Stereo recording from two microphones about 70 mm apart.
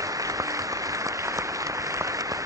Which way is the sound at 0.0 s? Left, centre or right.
Right.